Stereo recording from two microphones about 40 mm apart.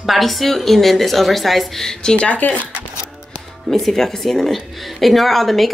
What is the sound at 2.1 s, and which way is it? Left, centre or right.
Speech, left.